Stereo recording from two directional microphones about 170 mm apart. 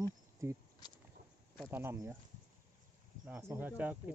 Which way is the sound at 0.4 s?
20° right (ahead or behind).